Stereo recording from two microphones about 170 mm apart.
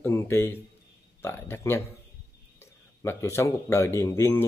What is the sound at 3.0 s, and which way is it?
Speech, 15° left (ahead or behind).